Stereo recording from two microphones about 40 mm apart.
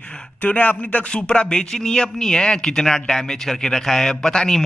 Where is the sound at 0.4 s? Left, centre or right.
Left.